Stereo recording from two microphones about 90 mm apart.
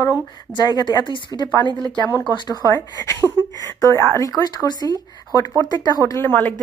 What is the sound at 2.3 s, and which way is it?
Speech, 50° left (ahead or behind).